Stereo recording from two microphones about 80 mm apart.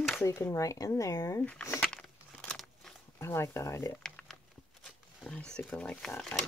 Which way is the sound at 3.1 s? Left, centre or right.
Left.